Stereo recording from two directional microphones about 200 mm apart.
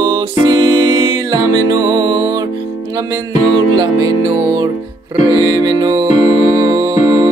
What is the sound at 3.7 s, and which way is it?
Music, 20° right (ahead or behind).